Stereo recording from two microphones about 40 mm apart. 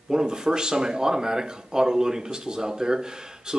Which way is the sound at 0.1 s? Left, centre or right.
Centre.